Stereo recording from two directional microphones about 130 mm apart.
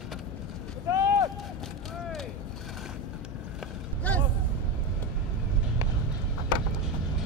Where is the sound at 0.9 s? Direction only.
25° right (ahead or behind).